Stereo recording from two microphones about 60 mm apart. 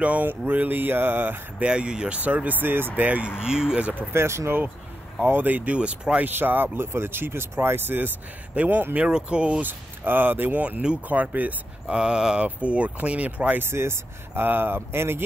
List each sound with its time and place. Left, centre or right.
0.0 s speech: right
1.6 s speech: centre; by 2.9 s right
3.0 s speech: right
4.1 s speech: right
5.2 s speech: right
5.8 s speech: centre
6.2 s speech: right
9.0 s speech: centre
9.7 s speech: right
11.9 s speech: centre
13.6 s speech: right